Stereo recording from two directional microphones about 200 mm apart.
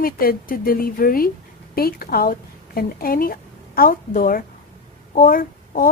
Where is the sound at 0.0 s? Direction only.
45° left (ahead or behind).